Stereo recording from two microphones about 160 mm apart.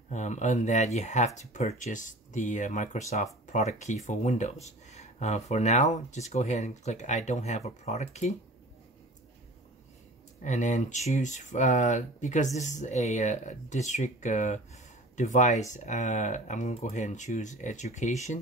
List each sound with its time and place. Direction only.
0.1 s speech: 45° left (ahead or behind)
10.4 s speech: 50° left (ahead or behind)